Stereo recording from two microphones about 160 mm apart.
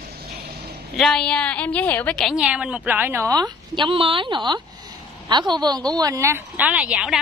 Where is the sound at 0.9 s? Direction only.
5° left (ahead or behind).